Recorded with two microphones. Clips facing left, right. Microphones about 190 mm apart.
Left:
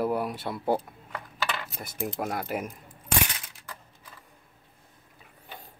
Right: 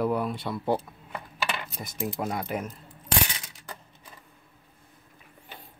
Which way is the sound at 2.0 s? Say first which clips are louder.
Right 1 dB; centre (ahead or behind).